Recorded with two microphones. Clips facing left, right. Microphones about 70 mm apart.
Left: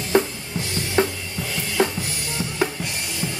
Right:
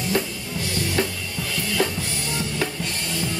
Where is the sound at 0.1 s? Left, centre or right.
Left.